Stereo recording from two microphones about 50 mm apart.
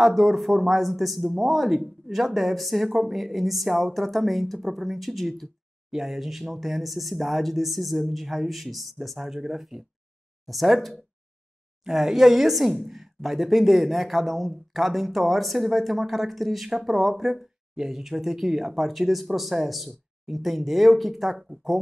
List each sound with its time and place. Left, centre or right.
0.0 s speech: centre